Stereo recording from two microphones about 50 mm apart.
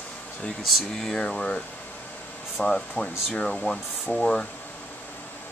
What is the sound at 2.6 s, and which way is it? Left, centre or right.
Speech, centre.